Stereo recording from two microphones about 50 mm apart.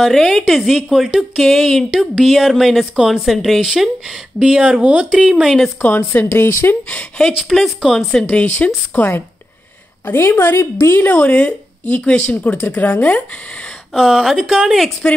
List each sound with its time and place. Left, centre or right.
0.0 s a woman's voice: centre
4.4 s speech: centre
5.4 s a woman's voice: centre
5.8 s speech: left
7.5 s a woman's voice: centre
8.3 s a woman's voice: left
11.0 s speech: left
11.3 s speech: left
13.9 s a woman's voice: centre